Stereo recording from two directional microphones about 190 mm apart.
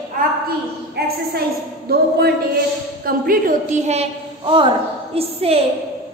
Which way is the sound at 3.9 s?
30° right (ahead or behind).